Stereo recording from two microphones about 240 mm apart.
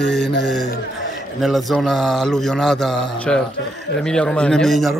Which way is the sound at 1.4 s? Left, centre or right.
Centre.